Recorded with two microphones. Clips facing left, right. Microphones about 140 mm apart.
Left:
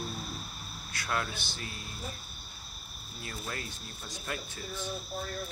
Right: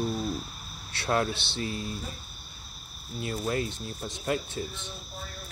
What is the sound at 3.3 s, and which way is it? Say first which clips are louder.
Speech: right 11 dB; 25° right (ahead or behind).